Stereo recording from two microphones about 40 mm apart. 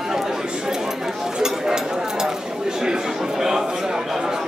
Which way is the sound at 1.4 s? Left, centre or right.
Centre.